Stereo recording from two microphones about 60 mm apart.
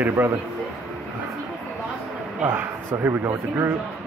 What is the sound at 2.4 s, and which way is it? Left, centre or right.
A man's voice, right.